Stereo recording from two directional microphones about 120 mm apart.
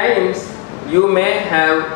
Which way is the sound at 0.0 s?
20° left (ahead or behind).